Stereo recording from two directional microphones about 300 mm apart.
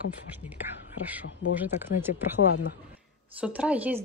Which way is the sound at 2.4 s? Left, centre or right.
Left.